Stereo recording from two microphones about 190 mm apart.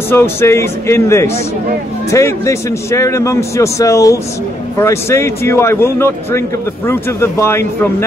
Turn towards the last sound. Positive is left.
turn(degrees=15)  # may be behind; listen again after turning